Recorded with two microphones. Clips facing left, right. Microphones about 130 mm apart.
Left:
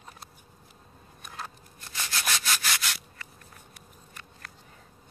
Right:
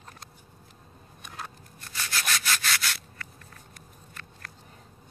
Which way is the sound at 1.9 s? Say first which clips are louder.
Right 1 dB; 20° left (ahead or behind).